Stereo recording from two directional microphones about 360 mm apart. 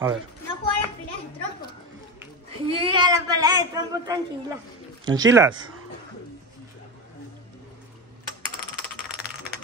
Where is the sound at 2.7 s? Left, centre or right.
Centre.